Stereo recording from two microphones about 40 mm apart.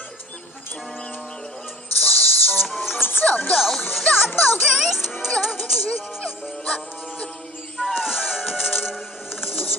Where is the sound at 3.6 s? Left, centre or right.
Centre.